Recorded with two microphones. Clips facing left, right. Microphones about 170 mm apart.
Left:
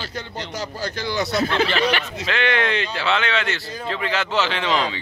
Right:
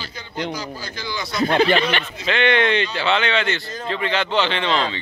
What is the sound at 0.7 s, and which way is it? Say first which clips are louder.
Speech: left 5 dB; 65° left (ahead or behind).